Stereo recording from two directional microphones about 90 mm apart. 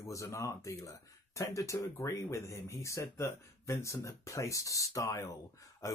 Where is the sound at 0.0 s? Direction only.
35° left (ahead or behind).